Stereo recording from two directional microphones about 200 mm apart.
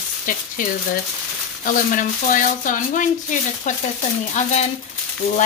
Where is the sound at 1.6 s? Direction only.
40° left (ahead or behind).